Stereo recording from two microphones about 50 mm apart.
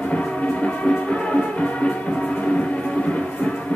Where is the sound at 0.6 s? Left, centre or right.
Left.